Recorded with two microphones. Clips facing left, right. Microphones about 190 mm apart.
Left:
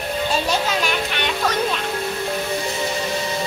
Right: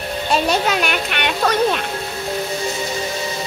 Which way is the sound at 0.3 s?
65° right (ahead or behind).